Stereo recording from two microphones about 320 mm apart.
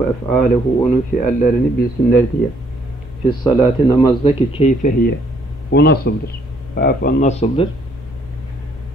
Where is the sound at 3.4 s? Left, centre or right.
Centre.